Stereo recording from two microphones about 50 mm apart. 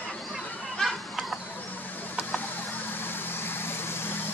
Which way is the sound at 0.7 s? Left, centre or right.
Centre.